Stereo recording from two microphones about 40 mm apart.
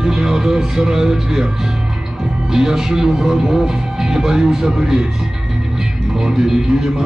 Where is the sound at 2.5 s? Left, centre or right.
Centre.